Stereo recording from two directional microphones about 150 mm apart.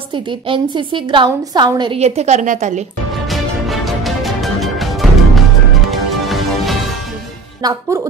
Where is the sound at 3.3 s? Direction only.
Centre (ahead or behind).